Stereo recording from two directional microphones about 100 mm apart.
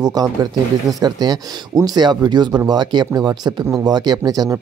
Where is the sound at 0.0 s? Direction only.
40° right (ahead or behind).